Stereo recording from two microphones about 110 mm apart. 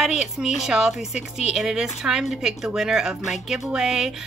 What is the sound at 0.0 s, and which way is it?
A woman's voice, 5° right (ahead or behind).